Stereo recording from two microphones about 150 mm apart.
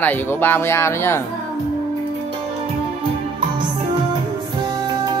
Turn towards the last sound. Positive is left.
turn(degrees=-30)  # may be behind; listen again after turning